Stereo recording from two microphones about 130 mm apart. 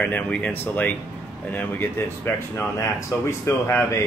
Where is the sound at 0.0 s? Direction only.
10° left (ahead or behind).